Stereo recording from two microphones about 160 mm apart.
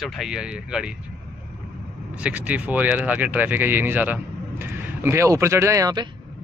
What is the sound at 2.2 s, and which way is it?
Speech, 10° right (ahead or behind).